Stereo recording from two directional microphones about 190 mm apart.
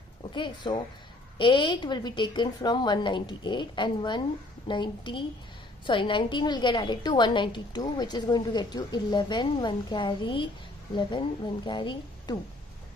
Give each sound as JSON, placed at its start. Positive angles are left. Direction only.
{"t": 0.3, "sound": "a woman's voice", "side_deg": 25}